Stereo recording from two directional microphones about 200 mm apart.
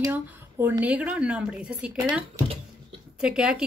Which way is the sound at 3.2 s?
5° right (ahead or behind).